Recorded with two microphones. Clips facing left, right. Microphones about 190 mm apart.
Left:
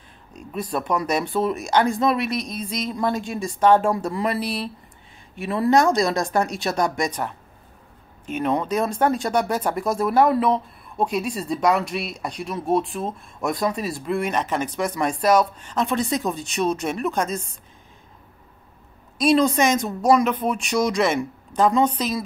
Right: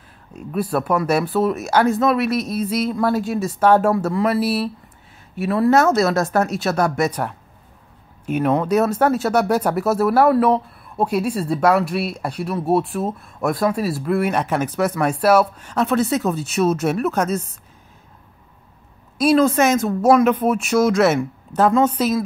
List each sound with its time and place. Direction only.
0.3 s speech: 5° right (ahead or behind)
19.1 s speech: 5° right (ahead or behind)